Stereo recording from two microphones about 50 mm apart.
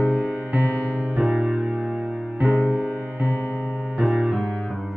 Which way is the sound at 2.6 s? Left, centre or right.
Right.